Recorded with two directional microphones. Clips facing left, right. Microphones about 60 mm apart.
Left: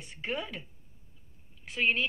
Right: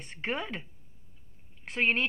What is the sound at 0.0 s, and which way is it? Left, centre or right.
Speech, right.